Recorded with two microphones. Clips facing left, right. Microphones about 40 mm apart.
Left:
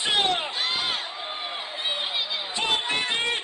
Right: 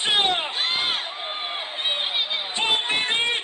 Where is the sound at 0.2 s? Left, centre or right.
Right.